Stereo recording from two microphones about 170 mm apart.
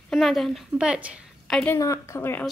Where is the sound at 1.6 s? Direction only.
15° left (ahead or behind).